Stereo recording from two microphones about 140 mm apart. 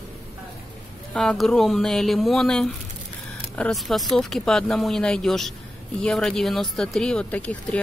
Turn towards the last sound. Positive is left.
turn(degrees=10)  # may be behind; listen again after turning